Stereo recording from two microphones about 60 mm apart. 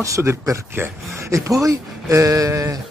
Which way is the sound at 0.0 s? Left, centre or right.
Right.